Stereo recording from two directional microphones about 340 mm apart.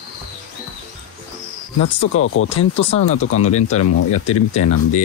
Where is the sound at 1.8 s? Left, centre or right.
Left.